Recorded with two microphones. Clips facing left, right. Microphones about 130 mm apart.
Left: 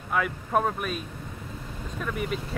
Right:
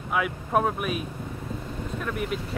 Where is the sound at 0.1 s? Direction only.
5° right (ahead or behind).